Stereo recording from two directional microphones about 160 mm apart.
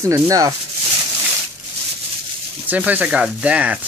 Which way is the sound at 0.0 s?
20° right (ahead or behind).